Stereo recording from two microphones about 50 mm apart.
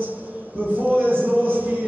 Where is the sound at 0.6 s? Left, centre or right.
Right.